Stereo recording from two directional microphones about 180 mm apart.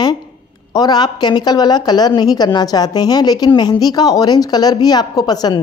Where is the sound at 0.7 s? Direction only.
25° left (ahead or behind).